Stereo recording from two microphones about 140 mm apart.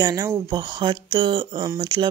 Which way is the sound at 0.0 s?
25° right (ahead or behind).